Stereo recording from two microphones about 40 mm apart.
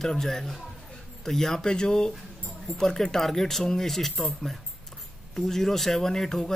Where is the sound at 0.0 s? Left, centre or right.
Centre.